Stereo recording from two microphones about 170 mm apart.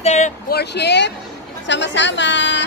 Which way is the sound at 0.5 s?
75° left (ahead or behind).